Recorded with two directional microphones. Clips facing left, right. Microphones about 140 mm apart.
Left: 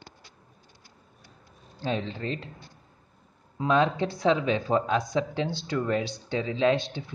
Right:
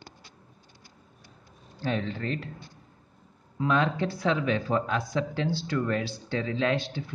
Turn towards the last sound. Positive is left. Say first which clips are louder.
# left 3 dB
turn(degrees=20)  # may be behind; listen again after turning